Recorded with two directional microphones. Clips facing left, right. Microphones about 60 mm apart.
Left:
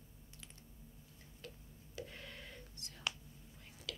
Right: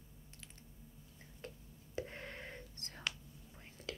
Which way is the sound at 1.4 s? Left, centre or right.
Right.